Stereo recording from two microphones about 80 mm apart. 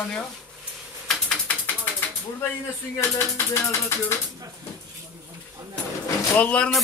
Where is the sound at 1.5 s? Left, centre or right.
Centre.